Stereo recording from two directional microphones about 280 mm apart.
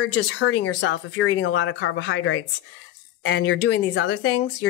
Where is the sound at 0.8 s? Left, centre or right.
Left.